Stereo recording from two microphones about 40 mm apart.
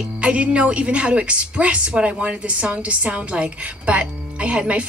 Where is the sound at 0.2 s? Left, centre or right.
Right.